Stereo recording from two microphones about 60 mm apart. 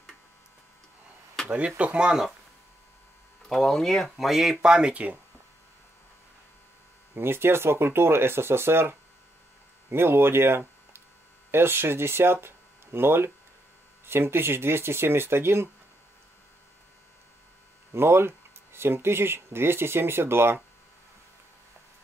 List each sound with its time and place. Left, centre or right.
1.8 s speech: centre
3.4 s speech: centre; by 5.2 s right
7.2 s speech: right
17.9 s speech: right